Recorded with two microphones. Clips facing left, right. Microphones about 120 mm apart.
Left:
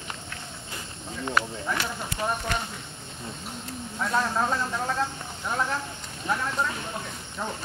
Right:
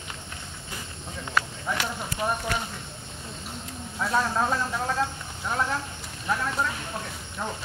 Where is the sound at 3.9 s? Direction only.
Centre (ahead or behind).